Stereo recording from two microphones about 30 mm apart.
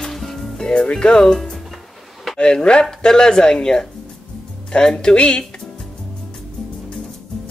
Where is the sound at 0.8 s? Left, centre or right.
Left.